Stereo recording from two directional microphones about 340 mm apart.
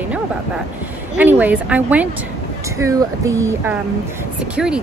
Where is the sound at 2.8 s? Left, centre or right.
Centre.